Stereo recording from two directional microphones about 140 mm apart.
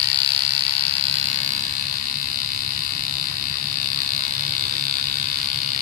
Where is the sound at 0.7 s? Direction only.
45° right (ahead or behind).